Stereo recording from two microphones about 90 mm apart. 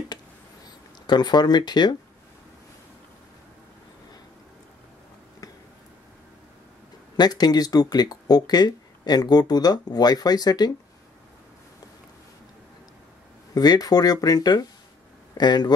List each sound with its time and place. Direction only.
1.0 s speech: 50° left (ahead or behind)
7.2 s speech: 50° left (ahead or behind)
13.6 s speech: 45° left (ahead or behind)